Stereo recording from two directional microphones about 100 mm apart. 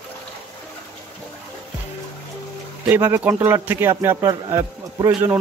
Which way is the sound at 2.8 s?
20° right (ahead or behind).